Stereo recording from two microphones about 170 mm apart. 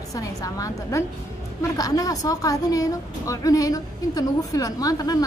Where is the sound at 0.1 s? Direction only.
20° left (ahead or behind).